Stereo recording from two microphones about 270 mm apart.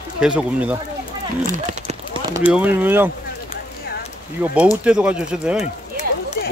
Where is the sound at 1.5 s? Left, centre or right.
Right.